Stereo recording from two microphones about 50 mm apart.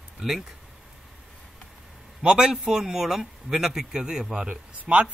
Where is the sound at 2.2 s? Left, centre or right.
Centre.